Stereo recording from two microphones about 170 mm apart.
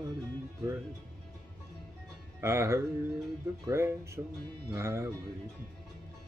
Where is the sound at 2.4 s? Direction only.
15° right (ahead or behind).